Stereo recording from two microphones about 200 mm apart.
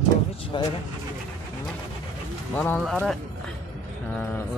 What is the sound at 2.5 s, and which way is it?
Speech, 10° left (ahead or behind).